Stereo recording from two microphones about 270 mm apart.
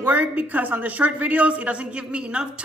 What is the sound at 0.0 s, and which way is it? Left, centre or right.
Speech, centre.